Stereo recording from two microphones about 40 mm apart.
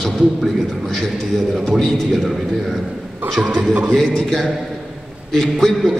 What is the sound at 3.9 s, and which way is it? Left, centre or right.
A man's voice, centre.